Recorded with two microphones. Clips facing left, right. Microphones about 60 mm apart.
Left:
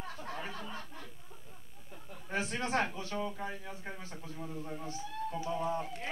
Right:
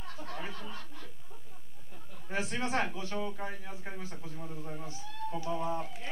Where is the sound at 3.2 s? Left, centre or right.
Centre.